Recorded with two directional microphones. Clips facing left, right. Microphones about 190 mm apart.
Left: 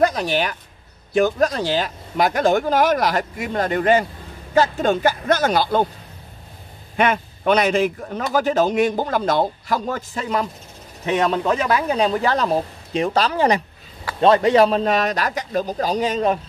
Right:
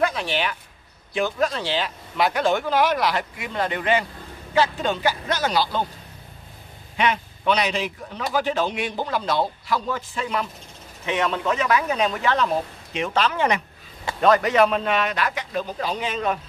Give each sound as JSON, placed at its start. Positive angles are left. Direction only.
{"t": 0.0, "sound": "a man's voice", "side_deg": 40}
{"t": 7.0, "sound": "a man's voice", "side_deg": 50}